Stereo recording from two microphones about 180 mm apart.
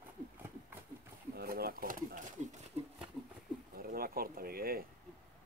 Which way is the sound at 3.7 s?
55° right (ahead or behind).